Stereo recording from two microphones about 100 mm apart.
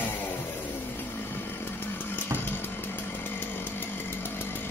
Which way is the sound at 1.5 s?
20° left (ahead or behind).